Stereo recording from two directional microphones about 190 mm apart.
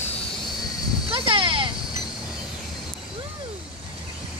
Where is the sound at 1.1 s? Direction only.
25° right (ahead or behind).